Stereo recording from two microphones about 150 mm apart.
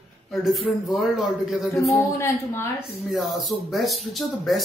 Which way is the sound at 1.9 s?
20° left (ahead or behind).